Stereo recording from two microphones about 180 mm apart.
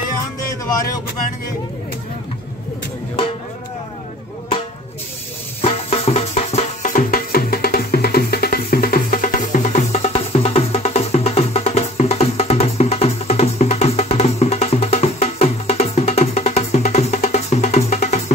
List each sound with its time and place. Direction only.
5.6 s music: 35° left (ahead or behind)